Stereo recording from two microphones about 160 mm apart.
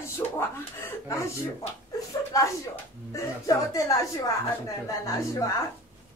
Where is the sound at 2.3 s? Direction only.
20° left (ahead or behind).